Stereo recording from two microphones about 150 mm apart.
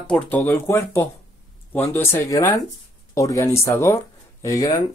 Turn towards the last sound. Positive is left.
turn(degrees=20)  # may be behind; listen again after turning